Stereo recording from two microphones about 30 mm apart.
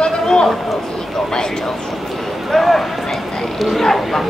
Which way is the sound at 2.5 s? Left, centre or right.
Centre.